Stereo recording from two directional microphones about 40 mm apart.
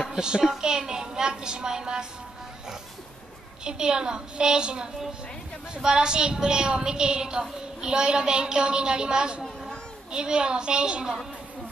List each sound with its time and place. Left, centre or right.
0.1 s a woman's voice: centre
3.6 s a woman's voice: centre